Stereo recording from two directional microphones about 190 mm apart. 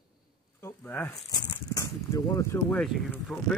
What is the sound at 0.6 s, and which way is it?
Speech, 10° left (ahead or behind).